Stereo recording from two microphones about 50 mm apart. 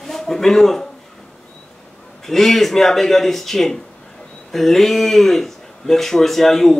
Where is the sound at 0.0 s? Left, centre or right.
Centre.